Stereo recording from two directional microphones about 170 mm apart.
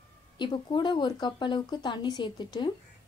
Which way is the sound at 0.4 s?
25° left (ahead or behind).